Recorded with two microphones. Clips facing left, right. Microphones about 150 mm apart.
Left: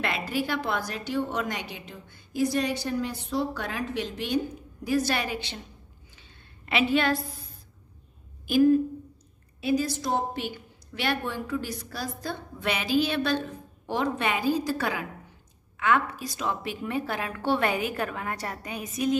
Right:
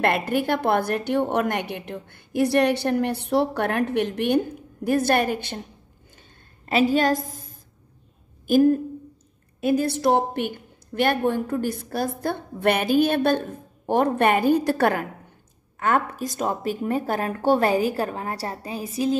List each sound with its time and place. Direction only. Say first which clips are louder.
0.0 s a woman's voice: right 7 dB; 55° right (ahead or behind)
6.1 s a sound: right 2 dB; 40° right (ahead or behind)
8.5 s a woman's voice: right 2 dB; 45° right (ahead or behind)
15.8 s a woman's voice: right 2 dB; 45° right (ahead or behind)